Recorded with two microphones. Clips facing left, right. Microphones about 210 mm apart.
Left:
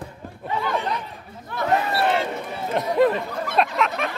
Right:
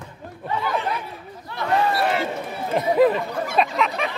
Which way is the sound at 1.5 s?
50° left (ahead or behind).